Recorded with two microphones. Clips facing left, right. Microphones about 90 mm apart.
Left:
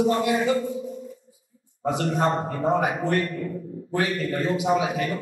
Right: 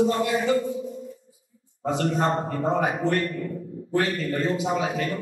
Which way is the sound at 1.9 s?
20° left (ahead or behind).